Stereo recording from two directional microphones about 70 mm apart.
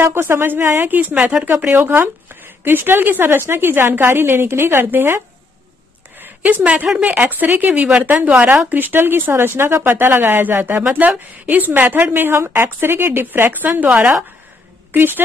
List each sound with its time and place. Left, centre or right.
0.0 s speech: right
6.1 s a sound: right
7.0 s a woman's voice: right